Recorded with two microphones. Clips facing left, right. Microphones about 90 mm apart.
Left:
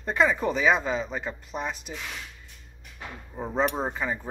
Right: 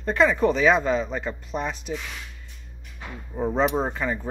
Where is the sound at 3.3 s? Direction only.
5° right (ahead or behind).